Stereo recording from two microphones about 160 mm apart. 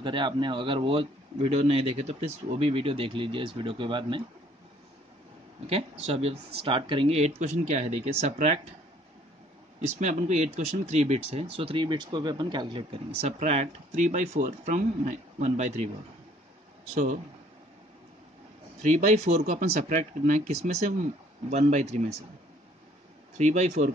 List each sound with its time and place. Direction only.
0.0 s a man's voice: 30° right (ahead or behind)
5.7 s a man's voice: 40° right (ahead or behind)
9.8 s speech: 45° right (ahead or behind)
16.9 s speech: 45° right (ahead or behind)
18.8 s speech: 50° right (ahead or behind)
23.3 s speech: 45° right (ahead or behind)